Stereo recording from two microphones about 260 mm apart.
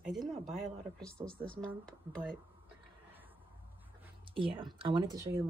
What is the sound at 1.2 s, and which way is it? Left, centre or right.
Speech, centre.